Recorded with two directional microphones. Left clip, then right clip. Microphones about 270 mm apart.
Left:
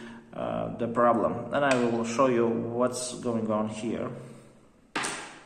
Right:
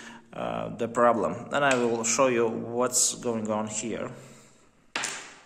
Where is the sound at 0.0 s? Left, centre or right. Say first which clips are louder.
Even; right.